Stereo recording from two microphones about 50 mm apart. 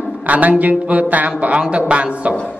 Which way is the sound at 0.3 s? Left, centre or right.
Right.